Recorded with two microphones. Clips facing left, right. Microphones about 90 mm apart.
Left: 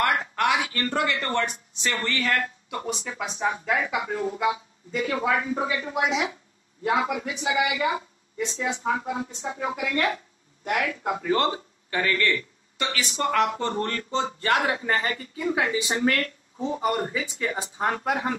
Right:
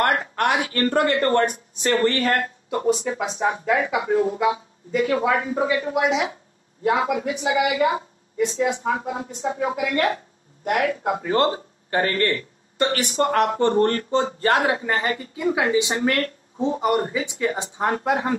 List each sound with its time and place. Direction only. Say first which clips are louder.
0.0 s a woman's voice: right 3 dB; 50° right (ahead or behind)
16.5 s a woman's voice: right 5 dB; 30° right (ahead or behind)